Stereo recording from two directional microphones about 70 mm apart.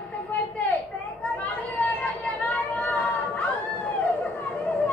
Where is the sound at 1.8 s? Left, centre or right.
Centre.